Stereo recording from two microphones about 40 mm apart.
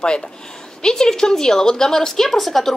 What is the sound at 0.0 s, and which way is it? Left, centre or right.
Speech, left.